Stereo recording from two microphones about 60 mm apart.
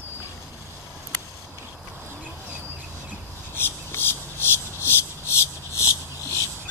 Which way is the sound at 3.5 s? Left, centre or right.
Left.